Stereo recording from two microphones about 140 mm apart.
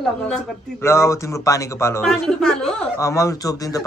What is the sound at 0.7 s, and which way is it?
A man's voice, 20° left (ahead or behind).